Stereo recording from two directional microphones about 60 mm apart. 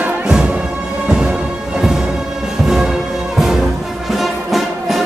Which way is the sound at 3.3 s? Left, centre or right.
Centre.